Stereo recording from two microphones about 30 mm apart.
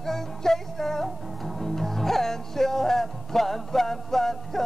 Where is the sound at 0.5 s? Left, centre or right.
Centre.